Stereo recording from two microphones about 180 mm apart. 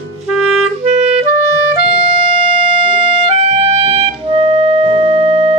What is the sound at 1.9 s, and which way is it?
Music, 30° right (ahead or behind).